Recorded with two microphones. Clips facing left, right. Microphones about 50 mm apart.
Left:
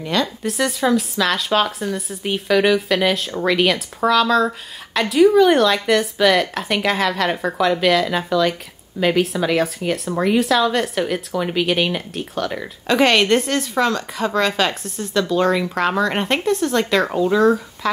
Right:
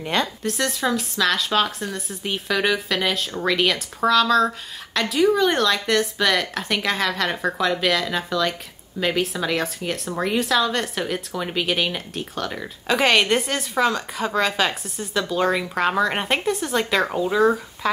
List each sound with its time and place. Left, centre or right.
0.0 s a woman's voice: right
0.4 s speech: centre